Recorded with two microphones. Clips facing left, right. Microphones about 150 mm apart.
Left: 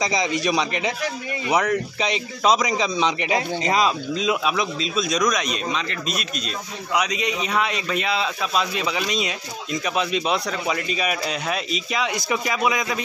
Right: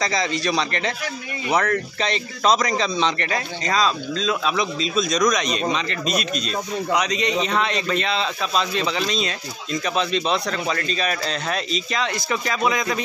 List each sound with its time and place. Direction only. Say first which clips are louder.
0.0 s speech: left 1 dB; 15° left (ahead or behind)
4.6 s speech: right 2 dB; 5° left (ahead or behind)